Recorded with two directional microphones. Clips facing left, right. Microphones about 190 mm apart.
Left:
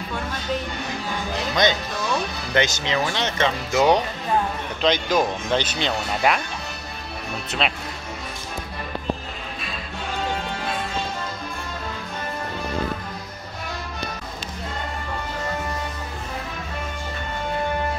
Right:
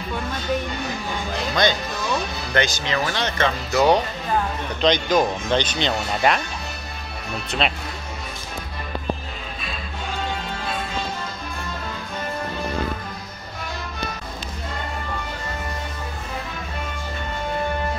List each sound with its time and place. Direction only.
1.5 s speech: 20° left (ahead or behind)
4.8 s speech: 5° left (ahead or behind)
7.6 s speech: centre (ahead or behind)